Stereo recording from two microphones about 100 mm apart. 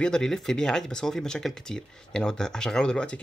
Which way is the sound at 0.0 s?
5° left (ahead or behind).